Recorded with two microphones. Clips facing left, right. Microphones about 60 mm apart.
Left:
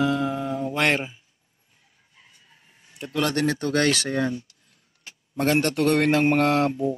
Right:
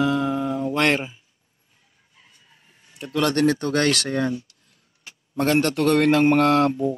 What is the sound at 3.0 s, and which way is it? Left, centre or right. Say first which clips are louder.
A man's voice: right 4 dB; centre.